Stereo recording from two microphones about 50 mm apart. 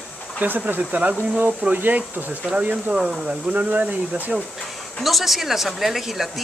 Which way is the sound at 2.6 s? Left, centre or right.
Right.